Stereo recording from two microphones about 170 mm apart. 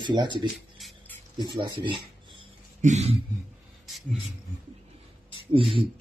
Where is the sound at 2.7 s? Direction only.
40° right (ahead or behind).